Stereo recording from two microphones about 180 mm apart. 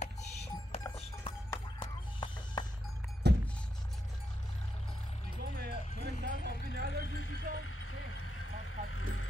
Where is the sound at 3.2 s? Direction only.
70° right (ahead or behind).